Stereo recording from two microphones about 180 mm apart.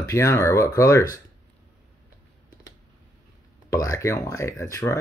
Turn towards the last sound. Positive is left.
turn(degrees=15)  # may be behind; listen again after turning